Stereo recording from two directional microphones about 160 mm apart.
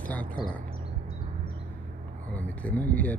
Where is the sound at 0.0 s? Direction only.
10° left (ahead or behind).